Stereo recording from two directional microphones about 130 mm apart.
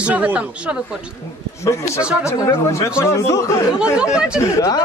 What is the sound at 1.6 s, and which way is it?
Speech, 25° left (ahead or behind).